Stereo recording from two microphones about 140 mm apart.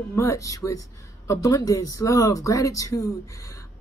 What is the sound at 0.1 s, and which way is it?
Speech, 20° left (ahead or behind).